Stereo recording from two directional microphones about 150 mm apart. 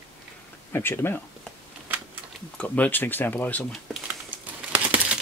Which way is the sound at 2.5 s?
10° left (ahead or behind).